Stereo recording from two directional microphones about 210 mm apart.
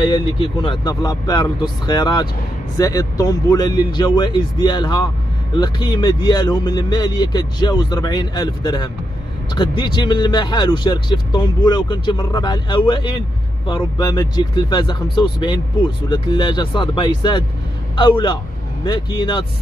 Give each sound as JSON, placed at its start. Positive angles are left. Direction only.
{"t": 0.0, "sound": "speech", "side_deg": 25}